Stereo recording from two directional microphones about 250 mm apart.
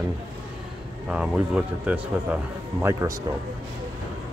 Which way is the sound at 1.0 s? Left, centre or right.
Centre.